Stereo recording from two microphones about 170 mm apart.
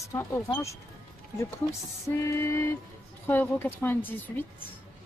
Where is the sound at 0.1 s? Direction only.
15° left (ahead or behind).